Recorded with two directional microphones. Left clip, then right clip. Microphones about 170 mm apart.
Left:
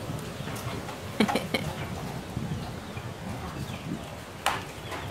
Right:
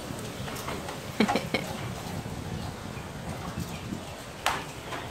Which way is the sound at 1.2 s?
15° left (ahead or behind).